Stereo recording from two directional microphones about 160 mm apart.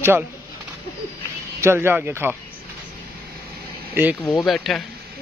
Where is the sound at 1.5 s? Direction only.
15° right (ahead or behind).